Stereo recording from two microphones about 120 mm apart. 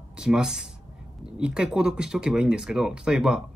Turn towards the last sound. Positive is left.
turn(degrees=-5)  # may be behind; listen again after turning